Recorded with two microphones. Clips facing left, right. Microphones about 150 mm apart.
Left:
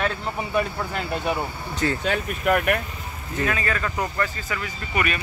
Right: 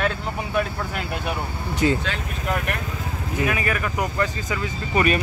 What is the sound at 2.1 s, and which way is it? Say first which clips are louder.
Speech: left 5 dB; 55° left (ahead or behind).